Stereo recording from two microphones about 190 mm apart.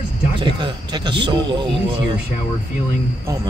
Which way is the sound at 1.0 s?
25° right (ahead or behind).